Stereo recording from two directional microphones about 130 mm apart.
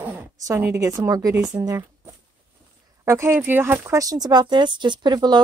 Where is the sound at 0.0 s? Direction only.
15° right (ahead or behind).